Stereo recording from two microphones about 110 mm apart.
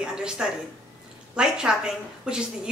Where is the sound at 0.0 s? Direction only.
5° right (ahead or behind).